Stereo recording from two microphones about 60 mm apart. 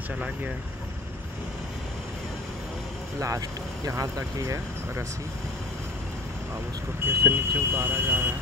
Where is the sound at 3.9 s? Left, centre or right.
Right.